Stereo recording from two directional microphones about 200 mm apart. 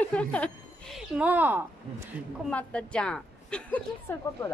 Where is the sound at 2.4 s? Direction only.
5° left (ahead or behind).